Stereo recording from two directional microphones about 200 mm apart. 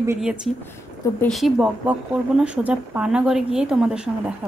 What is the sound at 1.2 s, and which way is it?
A woman's voice, centre (ahead or behind).